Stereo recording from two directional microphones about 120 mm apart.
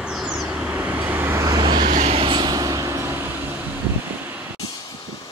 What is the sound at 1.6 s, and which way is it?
Vehicle, 40° right (ahead or behind).